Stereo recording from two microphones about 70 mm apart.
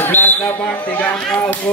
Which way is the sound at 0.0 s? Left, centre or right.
Left.